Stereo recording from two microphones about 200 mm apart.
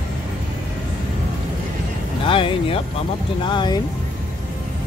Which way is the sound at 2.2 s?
25° left (ahead or behind).